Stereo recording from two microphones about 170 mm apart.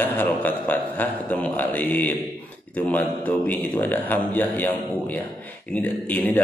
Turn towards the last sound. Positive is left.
turn(degrees=10)  # may be behind; listen again after turning